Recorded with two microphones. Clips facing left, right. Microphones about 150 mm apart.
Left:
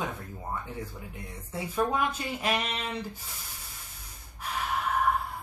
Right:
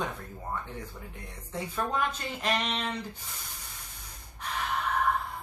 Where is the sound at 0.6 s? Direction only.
10° left (ahead or behind).